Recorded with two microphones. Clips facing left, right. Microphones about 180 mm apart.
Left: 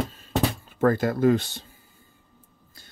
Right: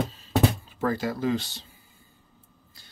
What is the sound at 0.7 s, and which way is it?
Speech, 50° left (ahead or behind).